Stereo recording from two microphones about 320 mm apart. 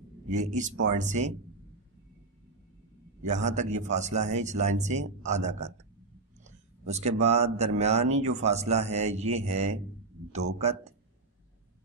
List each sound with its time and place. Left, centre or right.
0.3 s a man's voice: right
3.2 s a man's voice: right